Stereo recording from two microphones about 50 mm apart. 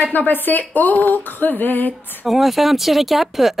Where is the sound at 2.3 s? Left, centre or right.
Centre.